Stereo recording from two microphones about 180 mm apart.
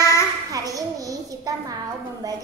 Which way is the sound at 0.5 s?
20° right (ahead or behind).